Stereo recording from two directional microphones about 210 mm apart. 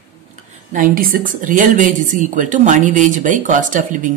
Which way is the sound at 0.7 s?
40° right (ahead or behind).